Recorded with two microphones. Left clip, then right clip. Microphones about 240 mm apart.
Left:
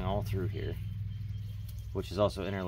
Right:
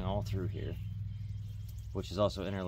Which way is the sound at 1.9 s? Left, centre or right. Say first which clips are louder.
Left 2 dB; right.